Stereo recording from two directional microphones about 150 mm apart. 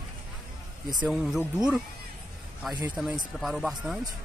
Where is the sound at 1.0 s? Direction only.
5° right (ahead or behind).